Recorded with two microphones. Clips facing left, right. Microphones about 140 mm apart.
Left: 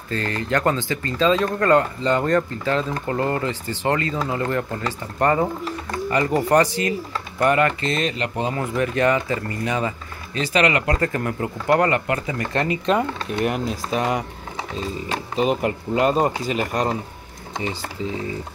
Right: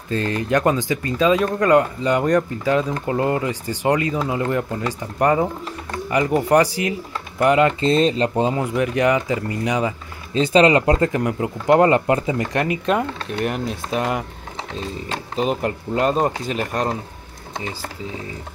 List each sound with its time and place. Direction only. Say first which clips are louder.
0.1 s speech: right 3 dB; 20° right (ahead or behind)
7.8 s speech: right 7 dB; 30° right (ahead or behind)
8.5 s speech: right 2 dB; 10° right (ahead or behind)
10.3 s speech: right 6 dB; 30° right (ahead or behind)
11.1 s speech: right 3 dB; 10° right (ahead or behind)
12.6 s speech: even; 5° right (ahead or behind)